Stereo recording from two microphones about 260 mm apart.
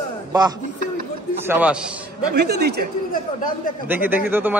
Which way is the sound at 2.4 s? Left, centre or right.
Right.